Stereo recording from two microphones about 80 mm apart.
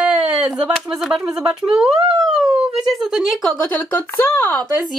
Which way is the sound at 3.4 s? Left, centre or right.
Centre.